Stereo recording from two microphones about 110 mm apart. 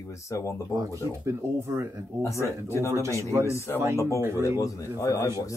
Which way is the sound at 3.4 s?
25° left (ahead or behind).